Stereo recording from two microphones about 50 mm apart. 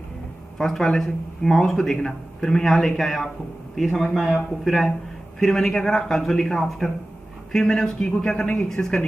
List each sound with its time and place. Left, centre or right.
0.6 s a man's voice: centre